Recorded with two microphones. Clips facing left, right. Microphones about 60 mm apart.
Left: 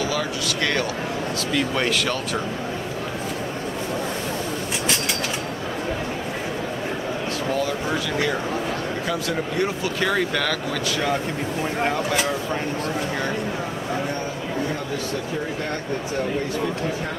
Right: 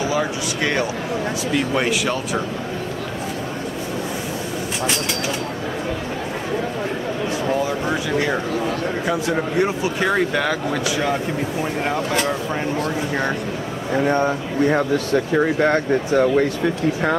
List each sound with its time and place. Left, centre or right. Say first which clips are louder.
0.1 s speech: right 3 dB; right
9.0 s speech: right 5 dB; right; by 12.3 s centre
14.0 s speech: right 9 dB; right
15.3 s speech: right 10 dB; right